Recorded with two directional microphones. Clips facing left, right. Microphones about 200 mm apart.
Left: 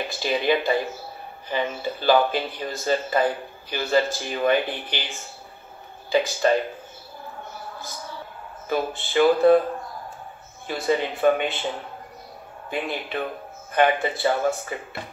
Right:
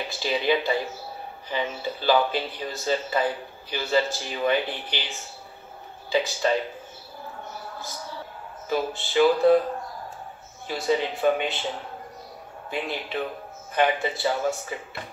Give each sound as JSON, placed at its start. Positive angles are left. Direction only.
{"t": 0.0, "sound": "speech", "side_deg": 50}
{"t": 8.6, "sound": "music", "side_deg": 55}
{"t": 10.7, "sound": "music", "side_deg": 55}
{"t": 12.6, "sound": "music", "side_deg": 55}